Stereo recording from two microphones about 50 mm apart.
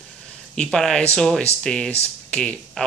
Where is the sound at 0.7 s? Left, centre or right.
Centre.